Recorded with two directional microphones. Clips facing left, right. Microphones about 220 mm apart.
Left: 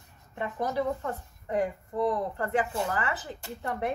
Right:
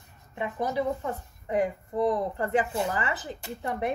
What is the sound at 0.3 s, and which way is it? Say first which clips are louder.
A woman's voice: right 1 dB; 10° right (ahead or behind).